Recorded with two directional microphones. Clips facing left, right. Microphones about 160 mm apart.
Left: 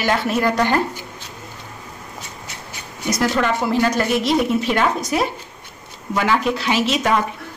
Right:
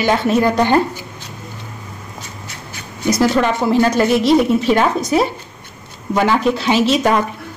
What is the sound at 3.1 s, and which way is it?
A woman's voice, 30° right (ahead or behind).